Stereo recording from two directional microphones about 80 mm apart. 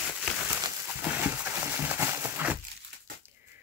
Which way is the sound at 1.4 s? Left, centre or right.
Right.